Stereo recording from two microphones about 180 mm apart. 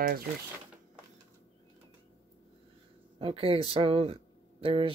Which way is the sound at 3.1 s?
30° right (ahead or behind).